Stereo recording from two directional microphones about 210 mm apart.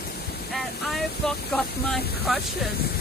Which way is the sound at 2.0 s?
50° left (ahead or behind).